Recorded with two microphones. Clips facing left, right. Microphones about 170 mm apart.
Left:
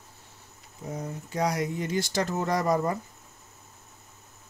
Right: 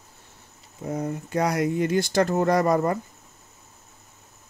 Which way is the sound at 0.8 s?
60° right (ahead or behind).